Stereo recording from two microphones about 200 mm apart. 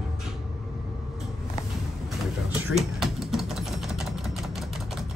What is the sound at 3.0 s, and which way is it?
Typing, centre (ahead or behind).